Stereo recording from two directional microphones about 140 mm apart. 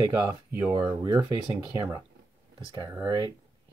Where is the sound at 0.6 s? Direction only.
15° right (ahead or behind).